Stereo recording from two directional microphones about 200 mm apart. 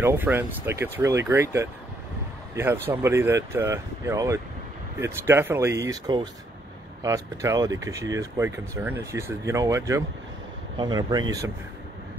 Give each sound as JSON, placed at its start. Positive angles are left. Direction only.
{"t": 0.0, "sound": "speech", "side_deg": -10}